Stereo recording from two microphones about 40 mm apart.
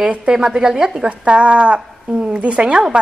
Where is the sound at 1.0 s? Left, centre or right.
Right.